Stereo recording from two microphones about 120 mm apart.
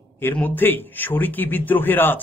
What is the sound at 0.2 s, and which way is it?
A man's voice, 15° left (ahead or behind).